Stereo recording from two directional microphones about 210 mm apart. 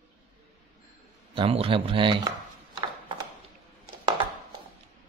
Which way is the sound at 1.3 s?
25° right (ahead or behind).